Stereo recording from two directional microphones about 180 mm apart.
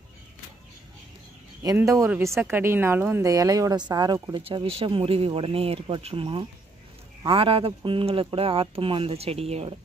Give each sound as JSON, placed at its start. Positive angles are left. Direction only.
{"t": 1.6, "sound": "a woman's voice", "side_deg": -20}